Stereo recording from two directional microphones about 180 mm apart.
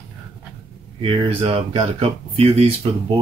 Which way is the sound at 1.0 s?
30° right (ahead or behind).